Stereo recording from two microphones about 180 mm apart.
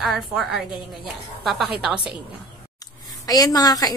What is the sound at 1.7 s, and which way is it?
Speech, 5° right (ahead or behind).